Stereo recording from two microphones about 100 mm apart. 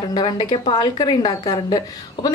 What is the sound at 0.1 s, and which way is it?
A woman's voice, 45° left (ahead or behind).